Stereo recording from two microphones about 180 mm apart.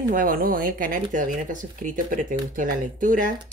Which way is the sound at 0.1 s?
50° right (ahead or behind).